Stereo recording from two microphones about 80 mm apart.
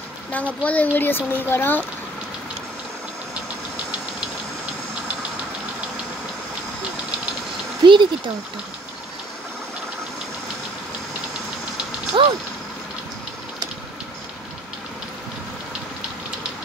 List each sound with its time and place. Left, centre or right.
0.3 s a child's voice: centre
7.8 s speech: right
12.1 s speech: right